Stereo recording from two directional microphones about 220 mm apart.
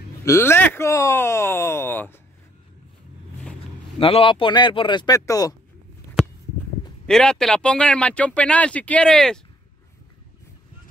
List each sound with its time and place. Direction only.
0.2 s speech: 10° left (ahead or behind)
4.0 s speech: 25° left (ahead or behind)
7.1 s speech: 5° left (ahead or behind)